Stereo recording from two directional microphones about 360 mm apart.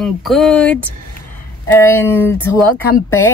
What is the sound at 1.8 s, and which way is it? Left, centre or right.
Music, centre.